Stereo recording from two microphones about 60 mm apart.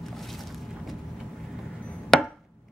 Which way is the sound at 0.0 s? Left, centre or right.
Centre.